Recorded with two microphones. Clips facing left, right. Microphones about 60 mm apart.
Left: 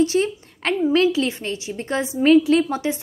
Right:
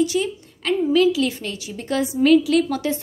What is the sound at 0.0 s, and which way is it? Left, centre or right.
A woman's voice, left.